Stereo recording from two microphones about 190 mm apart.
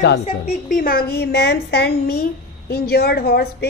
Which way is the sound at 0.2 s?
40° left (ahead or behind).